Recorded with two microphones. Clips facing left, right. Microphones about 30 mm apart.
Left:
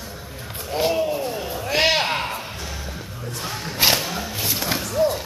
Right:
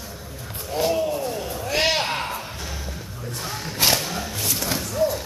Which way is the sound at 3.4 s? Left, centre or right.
Centre.